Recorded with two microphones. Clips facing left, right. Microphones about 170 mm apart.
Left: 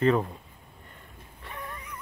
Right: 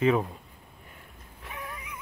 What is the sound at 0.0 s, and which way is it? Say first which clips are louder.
Speech: even; 5° right (ahead or behind).